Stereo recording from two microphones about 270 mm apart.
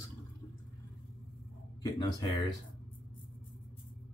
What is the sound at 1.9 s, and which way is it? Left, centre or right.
Speech, centre.